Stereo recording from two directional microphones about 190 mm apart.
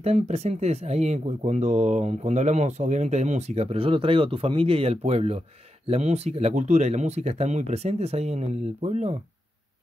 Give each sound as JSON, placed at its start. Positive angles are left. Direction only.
{"t": 0.0, "sound": "speech", "side_deg": -35}